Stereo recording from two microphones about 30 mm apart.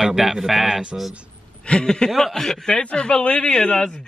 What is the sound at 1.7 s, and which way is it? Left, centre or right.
Speech, left.